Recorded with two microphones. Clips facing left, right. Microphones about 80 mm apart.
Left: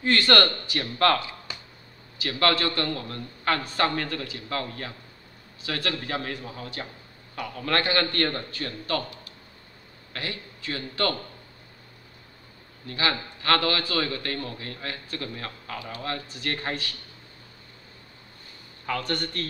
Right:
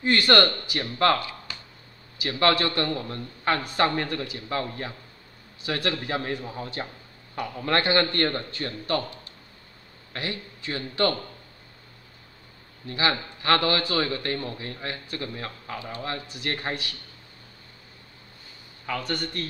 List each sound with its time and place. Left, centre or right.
0.0 s a man's voice: centre
2.1 s a man's voice: centre
12.8 s a man's voice: right
18.9 s a man's voice: centre